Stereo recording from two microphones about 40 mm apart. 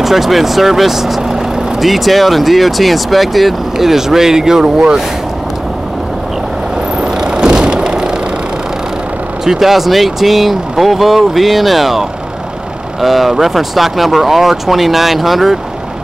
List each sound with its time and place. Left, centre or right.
0.0 s speech: centre
7.0 s vehicle: right
9.4 s speech: centre